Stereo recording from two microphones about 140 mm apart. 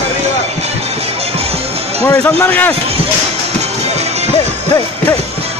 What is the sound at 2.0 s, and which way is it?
Speech, 15° left (ahead or behind).